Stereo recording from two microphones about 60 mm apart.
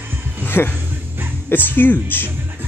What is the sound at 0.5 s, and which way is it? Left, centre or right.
Speech, left.